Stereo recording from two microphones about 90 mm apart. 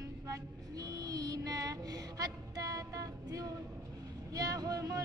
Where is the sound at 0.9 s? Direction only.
40° right (ahead or behind).